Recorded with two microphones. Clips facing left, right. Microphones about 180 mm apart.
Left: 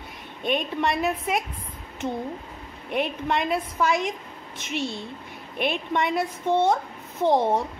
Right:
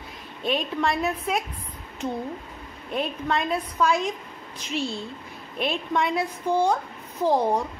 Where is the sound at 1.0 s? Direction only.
Centre (ahead or behind).